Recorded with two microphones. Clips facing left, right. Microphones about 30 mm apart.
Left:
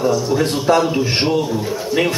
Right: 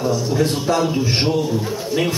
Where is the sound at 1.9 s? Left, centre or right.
Left.